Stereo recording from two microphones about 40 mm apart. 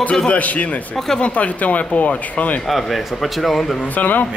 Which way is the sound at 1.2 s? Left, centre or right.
Left.